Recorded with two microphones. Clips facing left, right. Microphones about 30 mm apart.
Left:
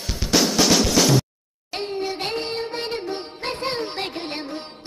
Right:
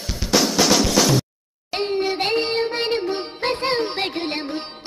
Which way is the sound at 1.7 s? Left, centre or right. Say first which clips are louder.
Right 5 dB; right.